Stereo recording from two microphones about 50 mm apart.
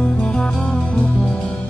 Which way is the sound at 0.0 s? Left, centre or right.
Left.